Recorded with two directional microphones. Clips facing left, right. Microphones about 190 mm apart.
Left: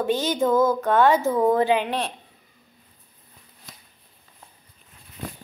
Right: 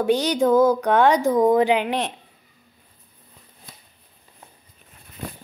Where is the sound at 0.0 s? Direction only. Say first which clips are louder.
Right 3 dB; 15° right (ahead or behind).